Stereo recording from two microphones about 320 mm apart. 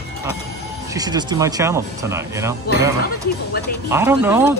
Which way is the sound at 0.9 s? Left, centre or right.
Centre.